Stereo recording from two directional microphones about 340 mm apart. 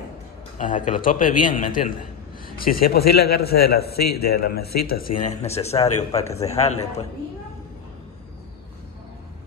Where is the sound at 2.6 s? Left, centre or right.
Left.